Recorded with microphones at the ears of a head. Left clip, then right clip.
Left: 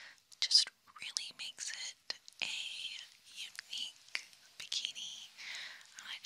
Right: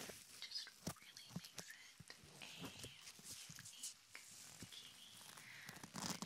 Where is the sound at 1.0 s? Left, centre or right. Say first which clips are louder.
Left 16 dB; left.